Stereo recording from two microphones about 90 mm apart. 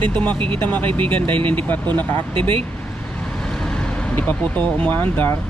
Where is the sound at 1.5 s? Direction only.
20° left (ahead or behind).